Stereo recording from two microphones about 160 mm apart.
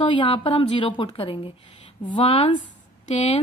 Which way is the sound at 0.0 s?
30° left (ahead or behind).